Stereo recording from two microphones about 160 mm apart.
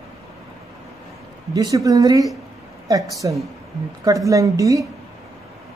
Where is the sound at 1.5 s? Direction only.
20° right (ahead or behind).